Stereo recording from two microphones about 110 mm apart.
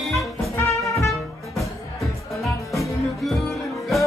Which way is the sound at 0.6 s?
30° left (ahead or behind).